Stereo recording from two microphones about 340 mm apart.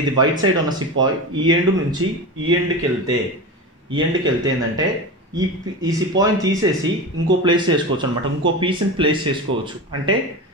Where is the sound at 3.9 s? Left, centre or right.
Centre.